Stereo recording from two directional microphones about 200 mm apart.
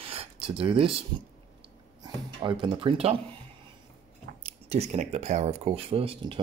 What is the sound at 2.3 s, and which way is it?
Speech, 25° right (ahead or behind).